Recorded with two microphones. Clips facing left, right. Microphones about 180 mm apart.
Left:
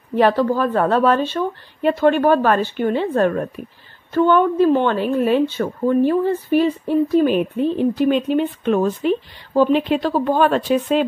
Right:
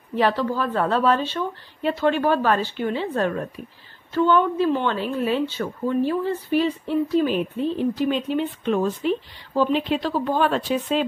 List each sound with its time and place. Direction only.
0.1 s a woman's voice: 50° left (ahead or behind)